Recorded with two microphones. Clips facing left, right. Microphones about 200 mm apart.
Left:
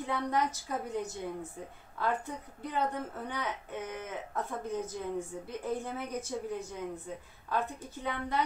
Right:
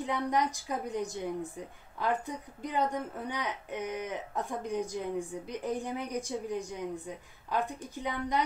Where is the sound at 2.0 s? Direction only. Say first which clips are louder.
Right 1 dB; 15° right (ahead or behind).